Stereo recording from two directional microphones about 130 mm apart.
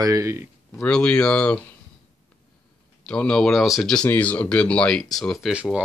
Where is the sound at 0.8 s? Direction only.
10° left (ahead or behind).